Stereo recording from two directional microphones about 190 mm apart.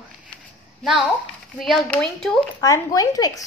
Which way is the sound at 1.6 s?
Centre (ahead or behind).